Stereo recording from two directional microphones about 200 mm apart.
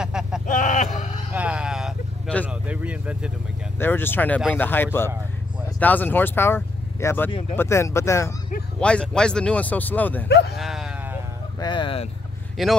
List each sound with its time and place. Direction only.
0.0 s vehicle: 5° right (ahead or behind)
0.5 s a sound: 40° left (ahead or behind)
1.3 s a sound: 5° right (ahead or behind)
2.4 s vehicle: 5° right (ahead or behind)
3.8 s speech: 10° left (ahead or behind)
10.2 s speech: 55° left (ahead or behind)
10.5 s sheep: centre (ahead or behind)
11.6 s speech: 25° left (ahead or behind)
12.6 s speech: centre (ahead or behind)